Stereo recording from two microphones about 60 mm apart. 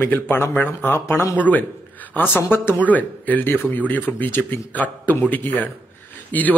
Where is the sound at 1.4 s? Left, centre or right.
Left.